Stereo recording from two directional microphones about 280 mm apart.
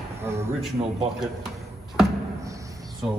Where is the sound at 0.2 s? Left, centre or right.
Centre.